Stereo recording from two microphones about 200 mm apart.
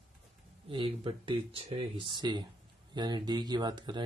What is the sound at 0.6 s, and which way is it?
Speech, 25° right (ahead or behind).